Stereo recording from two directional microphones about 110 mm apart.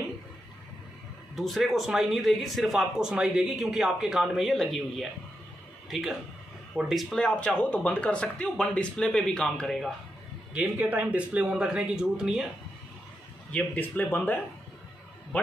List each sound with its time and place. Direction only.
1.3 s speech: centre (ahead or behind)
10.5 s speech: 15° right (ahead or behind)
13.5 s speech: 15° left (ahead or behind)